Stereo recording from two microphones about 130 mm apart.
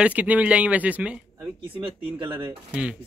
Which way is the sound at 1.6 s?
40° right (ahead or behind).